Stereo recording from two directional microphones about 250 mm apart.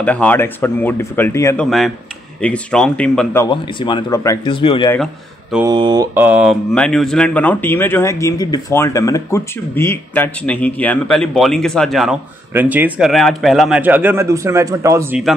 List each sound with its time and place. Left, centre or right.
0.0 s speech: centre
3.8 s speech: centre
4.9 s a man's voice: centre
5.7 s mantra: centre
6.7 s speech: centre